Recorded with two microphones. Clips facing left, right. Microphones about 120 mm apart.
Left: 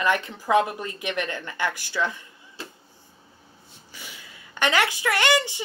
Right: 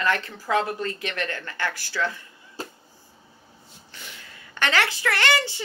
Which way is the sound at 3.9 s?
10° left (ahead or behind).